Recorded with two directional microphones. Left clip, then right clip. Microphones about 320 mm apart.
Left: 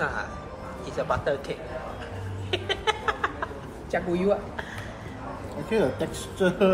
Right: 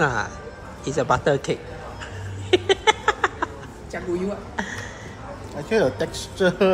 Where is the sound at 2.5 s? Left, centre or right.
Right.